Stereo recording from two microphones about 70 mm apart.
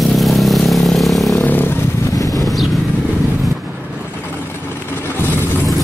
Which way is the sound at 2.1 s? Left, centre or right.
Left.